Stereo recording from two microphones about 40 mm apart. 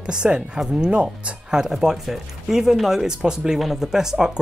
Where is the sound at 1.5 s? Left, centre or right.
Centre.